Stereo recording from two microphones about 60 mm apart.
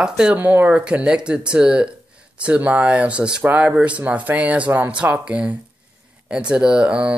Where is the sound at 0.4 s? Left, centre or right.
Right.